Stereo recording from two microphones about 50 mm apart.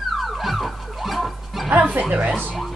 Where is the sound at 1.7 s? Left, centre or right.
Right.